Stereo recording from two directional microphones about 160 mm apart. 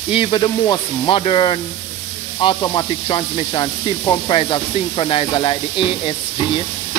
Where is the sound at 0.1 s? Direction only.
35° left (ahead or behind).